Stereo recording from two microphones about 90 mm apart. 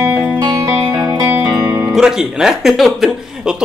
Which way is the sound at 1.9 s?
5° right (ahead or behind).